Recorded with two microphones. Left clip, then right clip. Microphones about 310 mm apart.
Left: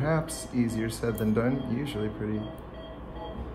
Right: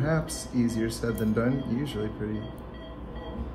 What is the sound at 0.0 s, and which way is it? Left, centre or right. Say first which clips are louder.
Speech: even; left.